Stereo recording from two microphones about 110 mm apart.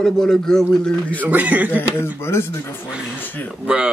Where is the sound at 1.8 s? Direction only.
20° left (ahead or behind).